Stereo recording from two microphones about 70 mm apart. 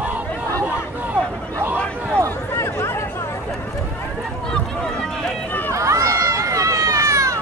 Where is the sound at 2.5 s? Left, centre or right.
Left.